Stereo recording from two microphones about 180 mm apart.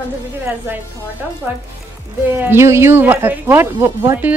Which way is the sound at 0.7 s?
10° right (ahead or behind).